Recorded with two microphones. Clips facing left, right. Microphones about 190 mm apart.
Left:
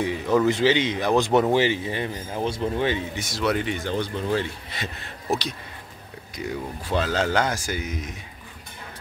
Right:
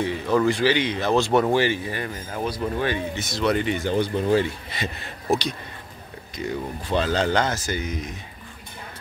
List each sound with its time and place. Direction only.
0.0 s a sound: 15° left (ahead or behind)
0.5 s speech: 20° left (ahead or behind); by 4.5 s 10° right (ahead or behind)
6.3 s speech: 5° left (ahead or behind)